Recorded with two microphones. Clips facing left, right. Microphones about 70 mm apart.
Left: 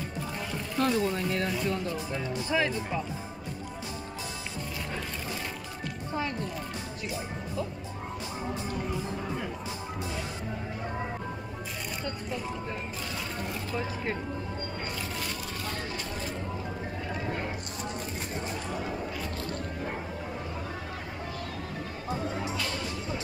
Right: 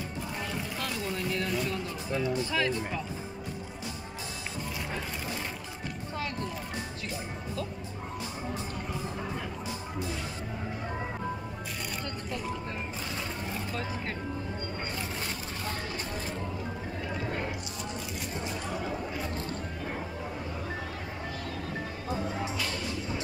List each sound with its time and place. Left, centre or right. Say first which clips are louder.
0.7 s speech: left 11 dB; left